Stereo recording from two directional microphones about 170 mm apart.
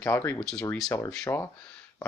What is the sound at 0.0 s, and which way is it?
Speech, 15° left (ahead or behind).